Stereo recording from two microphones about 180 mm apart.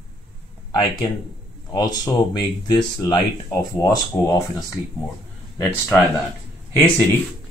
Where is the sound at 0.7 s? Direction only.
25° left (ahead or behind).